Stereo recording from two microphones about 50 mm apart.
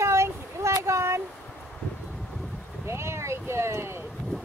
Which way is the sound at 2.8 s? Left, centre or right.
Right.